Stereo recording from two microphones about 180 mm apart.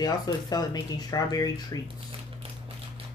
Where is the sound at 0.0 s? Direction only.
20° left (ahead or behind).